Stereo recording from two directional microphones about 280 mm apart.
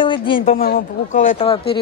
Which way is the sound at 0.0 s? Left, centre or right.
Centre.